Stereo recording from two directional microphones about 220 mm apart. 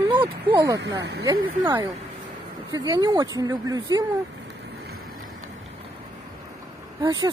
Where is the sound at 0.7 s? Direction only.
50° right (ahead or behind).